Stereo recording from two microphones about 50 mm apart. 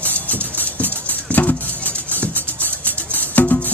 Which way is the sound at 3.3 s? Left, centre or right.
Left.